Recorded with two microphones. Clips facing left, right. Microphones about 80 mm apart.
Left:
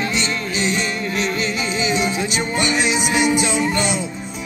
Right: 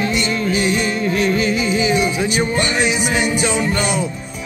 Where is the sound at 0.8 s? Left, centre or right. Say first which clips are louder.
Right 5 dB; right.